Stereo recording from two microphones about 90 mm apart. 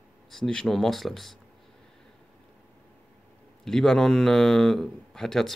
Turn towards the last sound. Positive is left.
turn(degrees=5)  # may be behind; listen again after turning